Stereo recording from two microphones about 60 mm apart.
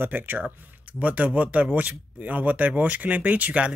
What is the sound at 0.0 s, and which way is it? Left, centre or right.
Speech, right.